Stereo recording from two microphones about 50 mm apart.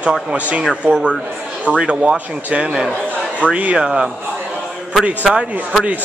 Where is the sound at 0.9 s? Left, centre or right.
Centre.